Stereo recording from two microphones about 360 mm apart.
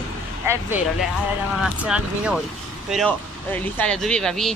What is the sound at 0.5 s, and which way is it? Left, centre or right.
Speech, centre.